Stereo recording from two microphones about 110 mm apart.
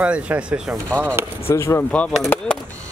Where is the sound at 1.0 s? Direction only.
20° right (ahead or behind).